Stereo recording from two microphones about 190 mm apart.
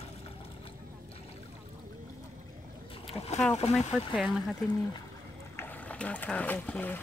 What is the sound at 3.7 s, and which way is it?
Speech, centre (ahead or behind).